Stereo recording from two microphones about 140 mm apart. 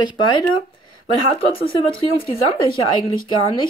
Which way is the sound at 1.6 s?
40° left (ahead or behind).